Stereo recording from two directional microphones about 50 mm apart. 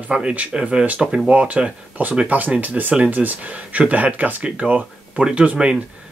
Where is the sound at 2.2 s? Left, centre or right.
Right.